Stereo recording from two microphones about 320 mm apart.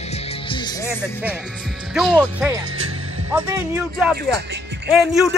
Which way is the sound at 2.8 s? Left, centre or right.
Right.